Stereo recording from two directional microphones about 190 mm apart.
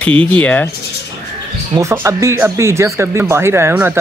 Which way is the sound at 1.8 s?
15° right (ahead or behind).